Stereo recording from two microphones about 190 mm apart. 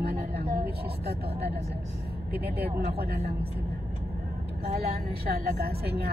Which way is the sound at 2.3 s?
55° right (ahead or behind).